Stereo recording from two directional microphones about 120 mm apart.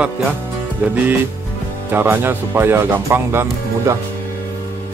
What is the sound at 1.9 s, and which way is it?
Speech, 20° right (ahead or behind).